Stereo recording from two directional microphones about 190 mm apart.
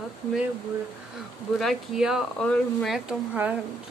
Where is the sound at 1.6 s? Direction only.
Centre (ahead or behind).